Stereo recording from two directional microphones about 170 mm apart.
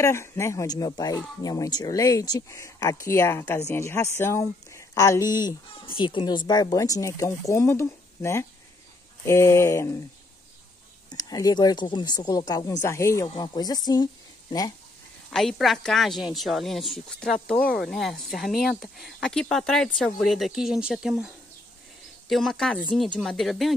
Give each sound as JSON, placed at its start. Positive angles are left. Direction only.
{"t": 0.0, "sound": "speech", "side_deg": 15}
{"t": 11.1, "sound": "speech", "side_deg": 25}
{"t": 15.3, "sound": "a woman's voice", "side_deg": 0}
{"t": 22.3, "sound": "a woman's voice", "side_deg": 0}